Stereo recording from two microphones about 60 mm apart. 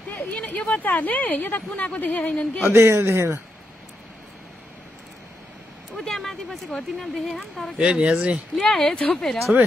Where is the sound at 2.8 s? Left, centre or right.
Right.